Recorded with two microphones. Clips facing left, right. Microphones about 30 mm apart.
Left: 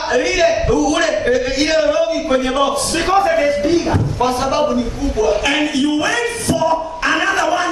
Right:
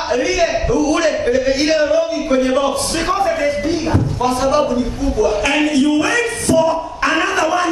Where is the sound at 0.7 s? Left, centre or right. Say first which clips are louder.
Even; left.